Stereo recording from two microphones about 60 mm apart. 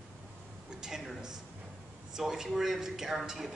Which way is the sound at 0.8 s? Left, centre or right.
Centre.